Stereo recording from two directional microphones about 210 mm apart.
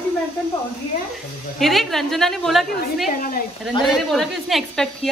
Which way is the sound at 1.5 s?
Centre (ahead or behind).